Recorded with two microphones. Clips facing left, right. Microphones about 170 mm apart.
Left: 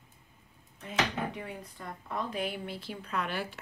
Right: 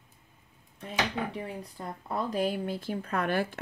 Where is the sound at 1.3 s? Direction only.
35° right (ahead or behind).